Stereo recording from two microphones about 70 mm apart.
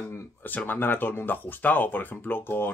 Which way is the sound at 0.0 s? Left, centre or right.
Left.